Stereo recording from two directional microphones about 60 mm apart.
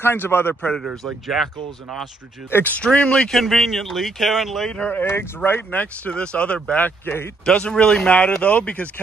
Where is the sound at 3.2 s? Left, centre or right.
Centre.